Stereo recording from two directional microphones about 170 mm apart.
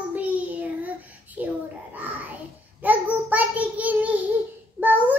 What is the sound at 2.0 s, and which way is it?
Music, 10° right (ahead or behind).